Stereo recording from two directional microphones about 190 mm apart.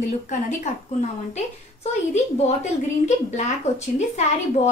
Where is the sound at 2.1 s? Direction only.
40° left (ahead or behind).